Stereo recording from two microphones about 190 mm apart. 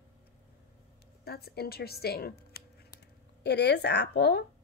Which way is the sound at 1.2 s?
55° left (ahead or behind).